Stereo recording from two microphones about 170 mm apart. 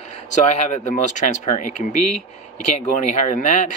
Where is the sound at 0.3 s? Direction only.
45° left (ahead or behind).